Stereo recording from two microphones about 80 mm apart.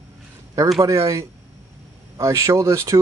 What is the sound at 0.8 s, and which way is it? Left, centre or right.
Speech, right.